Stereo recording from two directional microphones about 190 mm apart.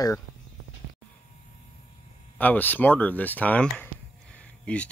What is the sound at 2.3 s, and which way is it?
Speech, 10° left (ahead or behind).